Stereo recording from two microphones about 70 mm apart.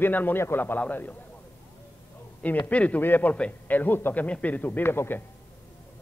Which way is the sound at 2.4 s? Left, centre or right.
Left.